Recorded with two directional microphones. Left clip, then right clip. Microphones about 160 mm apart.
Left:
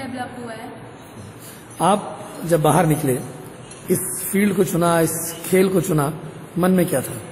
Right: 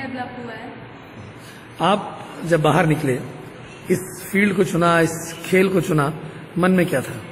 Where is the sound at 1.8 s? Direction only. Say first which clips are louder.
Left 1 dB; 30° left (ahead or behind).